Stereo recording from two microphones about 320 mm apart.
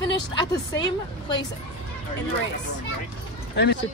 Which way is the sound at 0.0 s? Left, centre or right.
Centre.